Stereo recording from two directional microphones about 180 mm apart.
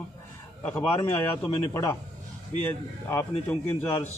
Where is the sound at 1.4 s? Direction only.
15° left (ahead or behind).